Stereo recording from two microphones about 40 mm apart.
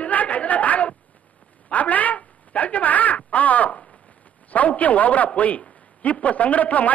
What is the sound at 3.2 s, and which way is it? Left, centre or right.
Crow, left.